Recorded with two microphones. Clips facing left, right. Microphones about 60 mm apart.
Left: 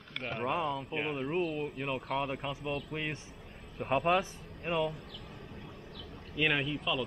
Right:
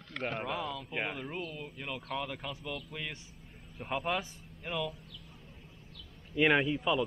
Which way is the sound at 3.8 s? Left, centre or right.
Centre.